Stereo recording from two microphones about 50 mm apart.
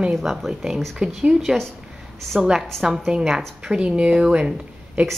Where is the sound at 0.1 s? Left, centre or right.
Centre.